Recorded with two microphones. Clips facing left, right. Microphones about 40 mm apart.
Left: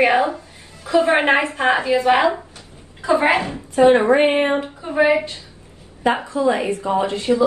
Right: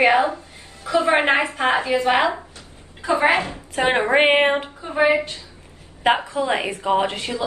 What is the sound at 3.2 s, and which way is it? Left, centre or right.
Speech, right.